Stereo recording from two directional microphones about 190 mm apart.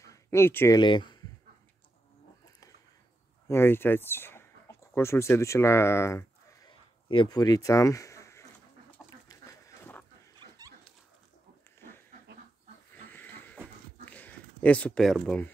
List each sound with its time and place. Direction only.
0.0 s a sound: 15° left (ahead or behind)
0.7 s speech: 25° left (ahead or behind)
3.4 s speech: 10° left (ahead or behind)
7.1 s speech: 25° left (ahead or behind)
8.9 s chicken: 15° left (ahead or behind)
10.6 s dog: 20° right (ahead or behind)
12.9 s goat: 10° left (ahead or behind)
14.0 s a sound: 10° left (ahead or behind)